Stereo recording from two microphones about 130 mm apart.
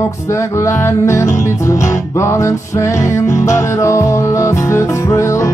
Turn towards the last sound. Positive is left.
turn(degrees=20)  # may be behind; listen again after turning